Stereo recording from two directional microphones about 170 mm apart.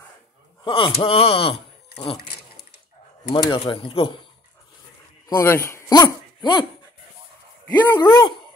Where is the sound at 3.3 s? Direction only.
30° left (ahead or behind).